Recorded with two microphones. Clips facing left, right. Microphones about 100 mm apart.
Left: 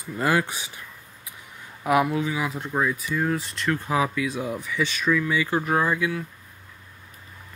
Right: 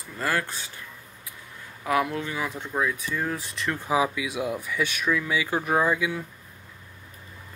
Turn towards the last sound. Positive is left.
turn(degrees=-15)  # may be behind; listen again after turning